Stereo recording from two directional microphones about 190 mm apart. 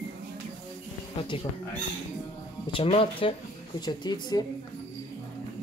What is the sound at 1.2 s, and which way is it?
Speech, 25° left (ahead or behind).